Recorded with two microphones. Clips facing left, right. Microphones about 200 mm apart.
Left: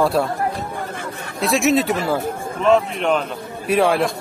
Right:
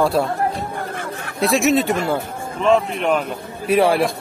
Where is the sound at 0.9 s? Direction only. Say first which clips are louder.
Right 1 dB; 60° right (ahead or behind).